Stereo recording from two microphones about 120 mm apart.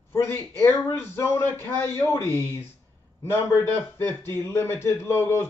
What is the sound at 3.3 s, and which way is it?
A man's voice, 20° left (ahead or behind).